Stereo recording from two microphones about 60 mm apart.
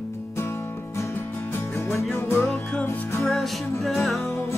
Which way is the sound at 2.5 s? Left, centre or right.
Left.